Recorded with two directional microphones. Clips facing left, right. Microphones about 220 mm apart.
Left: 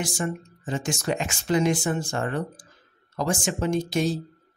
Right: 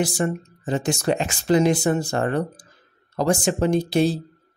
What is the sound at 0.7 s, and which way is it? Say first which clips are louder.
Speech: right 5 dB; 35° right (ahead or behind).